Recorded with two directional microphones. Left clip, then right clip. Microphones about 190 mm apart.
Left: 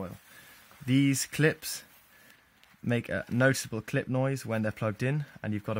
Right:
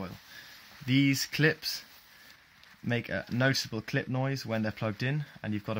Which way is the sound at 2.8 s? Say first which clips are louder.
Left 1 dB; 45° left (ahead or behind).